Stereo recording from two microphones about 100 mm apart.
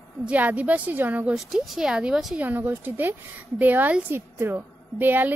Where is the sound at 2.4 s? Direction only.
20° right (ahead or behind).